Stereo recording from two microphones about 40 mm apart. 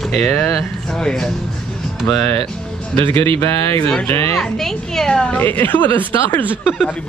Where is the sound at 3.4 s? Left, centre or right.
Left.